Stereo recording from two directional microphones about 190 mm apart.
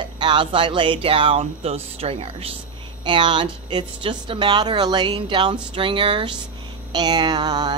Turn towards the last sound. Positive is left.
turn(degrees=-20)  # may be behind; listen again after turning